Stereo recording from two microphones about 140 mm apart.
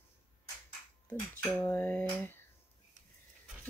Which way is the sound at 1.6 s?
15° left (ahead or behind).